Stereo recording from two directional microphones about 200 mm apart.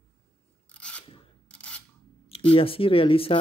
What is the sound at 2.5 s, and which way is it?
Speech, 25° left (ahead or behind).